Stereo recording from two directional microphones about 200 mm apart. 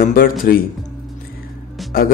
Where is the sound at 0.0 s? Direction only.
45° left (ahead or behind).